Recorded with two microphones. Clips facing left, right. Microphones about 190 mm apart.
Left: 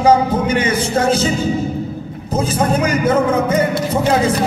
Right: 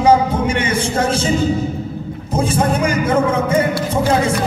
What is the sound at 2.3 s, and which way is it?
Speech, 30° right (ahead or behind).